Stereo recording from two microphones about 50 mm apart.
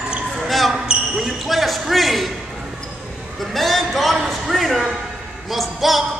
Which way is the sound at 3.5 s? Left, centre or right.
Centre.